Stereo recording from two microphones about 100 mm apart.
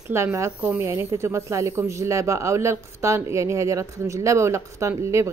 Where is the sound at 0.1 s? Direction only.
30° right (ahead or behind).